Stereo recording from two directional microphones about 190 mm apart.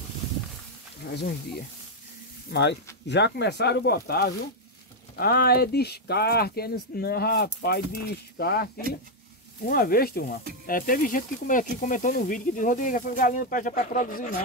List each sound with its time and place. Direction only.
1.0 s speech: 60° left (ahead or behind)
3.1 s speech: 60° left (ahead or behind); by 14.3 s 45° left (ahead or behind)